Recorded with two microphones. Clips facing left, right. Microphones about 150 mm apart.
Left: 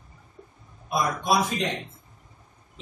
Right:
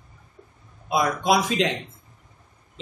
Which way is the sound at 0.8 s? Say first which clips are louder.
Right 3 dB; 90° right.